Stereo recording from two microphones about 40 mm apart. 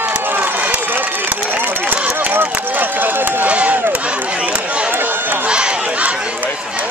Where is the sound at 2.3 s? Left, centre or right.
Right.